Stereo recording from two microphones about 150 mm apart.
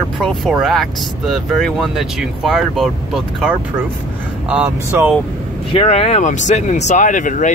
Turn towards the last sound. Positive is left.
turn(degrees=55)  # may be behind; listen again after turning